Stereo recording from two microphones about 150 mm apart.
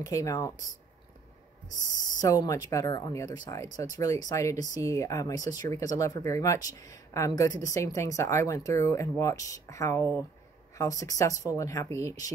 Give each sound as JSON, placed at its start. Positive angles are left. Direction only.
{"t": 0.0, "sound": "speech", "side_deg": 20}
{"t": 2.1, "sound": "speech", "side_deg": 25}